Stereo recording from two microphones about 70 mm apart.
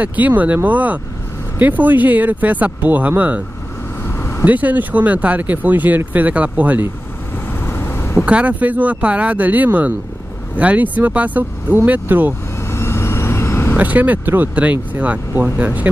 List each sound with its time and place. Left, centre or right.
0.0 s speech: right
4.0 s vehicle: left
4.5 s speech: right
7.6 s vehicle: left
8.3 s speech: centre
12.6 s vehicle: left
13.7 s speech: right